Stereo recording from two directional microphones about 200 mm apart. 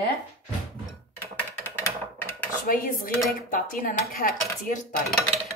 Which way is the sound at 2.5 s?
45° left (ahead or behind).